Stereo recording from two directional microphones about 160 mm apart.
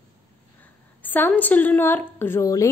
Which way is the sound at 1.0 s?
10° left (ahead or behind).